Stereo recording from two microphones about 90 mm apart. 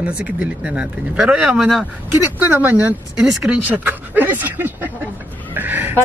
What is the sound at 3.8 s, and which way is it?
Speech, 20° right (ahead or behind).